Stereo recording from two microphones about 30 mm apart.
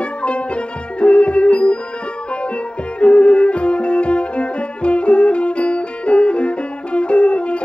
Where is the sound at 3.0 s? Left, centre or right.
Left.